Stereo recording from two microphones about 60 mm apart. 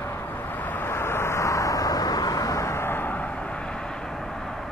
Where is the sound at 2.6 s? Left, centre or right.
Left.